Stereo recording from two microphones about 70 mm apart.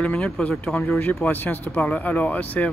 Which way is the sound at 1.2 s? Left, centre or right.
Left.